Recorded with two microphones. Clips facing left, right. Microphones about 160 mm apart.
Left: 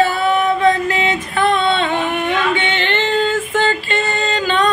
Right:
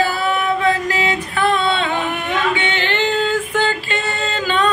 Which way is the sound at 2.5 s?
5° right (ahead or behind).